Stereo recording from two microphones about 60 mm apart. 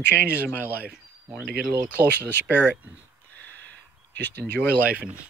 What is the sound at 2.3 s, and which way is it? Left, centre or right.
Speech, left.